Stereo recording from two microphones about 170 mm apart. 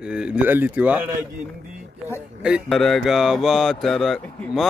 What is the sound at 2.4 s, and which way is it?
Speech, 5° right (ahead or behind).